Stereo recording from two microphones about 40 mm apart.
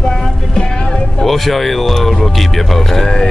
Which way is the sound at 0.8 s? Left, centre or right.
Left.